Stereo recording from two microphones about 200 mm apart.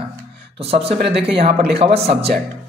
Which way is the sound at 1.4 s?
55° right (ahead or behind).